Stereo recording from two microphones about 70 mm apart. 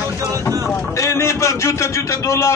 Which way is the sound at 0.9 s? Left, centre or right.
Left.